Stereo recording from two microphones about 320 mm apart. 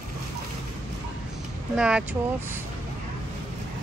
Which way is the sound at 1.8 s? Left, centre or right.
Centre.